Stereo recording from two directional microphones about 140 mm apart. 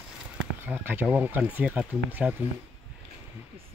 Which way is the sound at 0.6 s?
15° right (ahead or behind).